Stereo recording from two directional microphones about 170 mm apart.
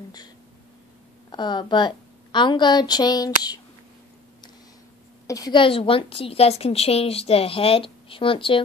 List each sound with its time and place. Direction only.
1.3 s a woman's voice: 25° left (ahead or behind)
5.2 s a woman's voice: 20° left (ahead or behind)